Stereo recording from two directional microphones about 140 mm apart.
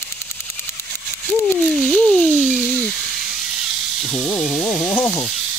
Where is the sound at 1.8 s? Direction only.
10° left (ahead or behind).